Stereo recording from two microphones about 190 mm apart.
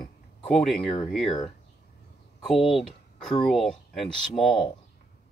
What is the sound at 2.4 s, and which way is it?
Speech, centre (ahead or behind).